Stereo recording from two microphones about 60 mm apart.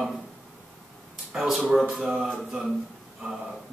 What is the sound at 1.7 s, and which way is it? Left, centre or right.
Speech, centre.